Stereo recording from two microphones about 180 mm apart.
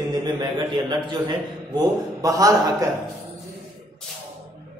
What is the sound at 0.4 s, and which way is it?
A man's voice, 25° right (ahead or behind).